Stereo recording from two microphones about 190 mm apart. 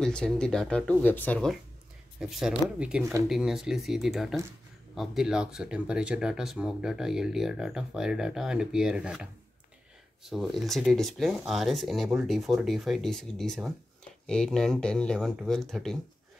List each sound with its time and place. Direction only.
0.0 s speech: 5° left (ahead or behind)
3.0 s speech: 15° right (ahead or behind)
3.3 s speech: 5° right (ahead or behind)